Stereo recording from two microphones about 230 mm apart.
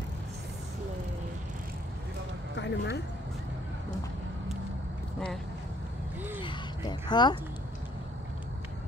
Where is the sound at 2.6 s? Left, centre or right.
Left.